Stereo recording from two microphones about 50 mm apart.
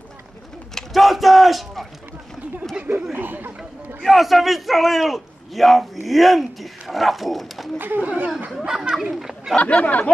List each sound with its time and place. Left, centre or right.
0.7 s a sound: centre
3.2 s speech: right
4.0 s a man's voice: centre
8.0 s speech: right
8.6 s a child's voice: centre
9.6 s speech: left